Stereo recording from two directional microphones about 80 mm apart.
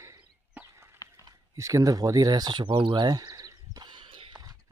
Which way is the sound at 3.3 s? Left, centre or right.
Right.